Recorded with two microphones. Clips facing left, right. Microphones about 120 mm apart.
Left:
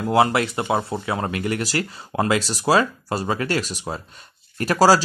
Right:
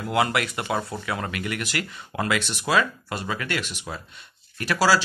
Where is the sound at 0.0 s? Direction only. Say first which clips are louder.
Left 5 dB; 30° left (ahead or behind).